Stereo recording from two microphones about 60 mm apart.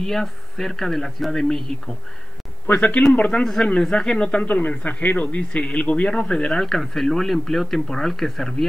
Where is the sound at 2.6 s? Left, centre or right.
Left.